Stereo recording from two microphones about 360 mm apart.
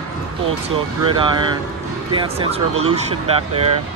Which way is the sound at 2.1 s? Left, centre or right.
Centre.